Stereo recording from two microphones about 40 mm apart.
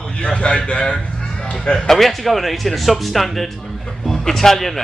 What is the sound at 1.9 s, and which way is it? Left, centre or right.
A man's voice, centre.